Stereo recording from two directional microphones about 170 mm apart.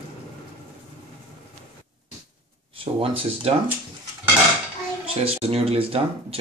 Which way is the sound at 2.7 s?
30° right (ahead or behind).